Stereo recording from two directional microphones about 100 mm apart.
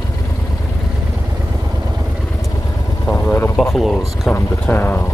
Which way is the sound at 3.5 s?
Centre (ahead or behind).